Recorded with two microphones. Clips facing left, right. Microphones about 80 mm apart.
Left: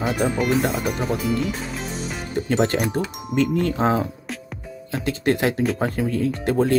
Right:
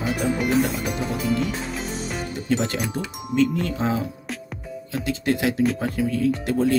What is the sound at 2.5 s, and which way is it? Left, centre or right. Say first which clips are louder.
Speech: left 3 dB; left.